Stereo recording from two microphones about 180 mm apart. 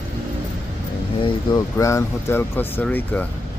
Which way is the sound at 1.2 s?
20° left (ahead or behind).